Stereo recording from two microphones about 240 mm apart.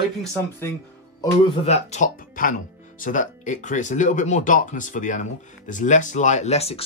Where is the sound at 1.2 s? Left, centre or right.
Left.